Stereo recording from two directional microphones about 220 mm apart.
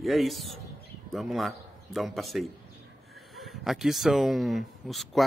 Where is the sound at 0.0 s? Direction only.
Centre (ahead or behind).